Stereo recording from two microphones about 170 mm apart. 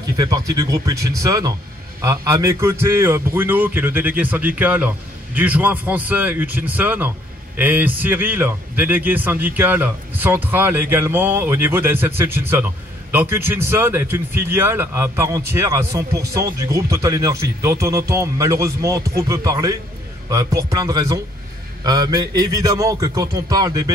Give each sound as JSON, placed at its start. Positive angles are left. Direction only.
{"t": 0.2, "sound": "a man's voice", "side_deg": -20}